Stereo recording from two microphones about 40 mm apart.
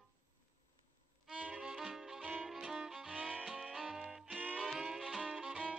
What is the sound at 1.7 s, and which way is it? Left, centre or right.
Music, centre.